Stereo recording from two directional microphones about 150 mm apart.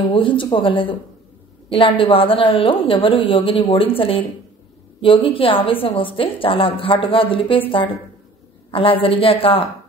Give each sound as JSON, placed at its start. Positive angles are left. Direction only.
{"t": 0.1, "sound": "a woman's voice", "side_deg": 35}